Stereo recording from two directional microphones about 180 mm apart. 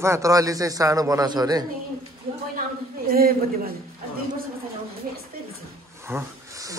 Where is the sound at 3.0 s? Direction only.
55° right (ahead or behind).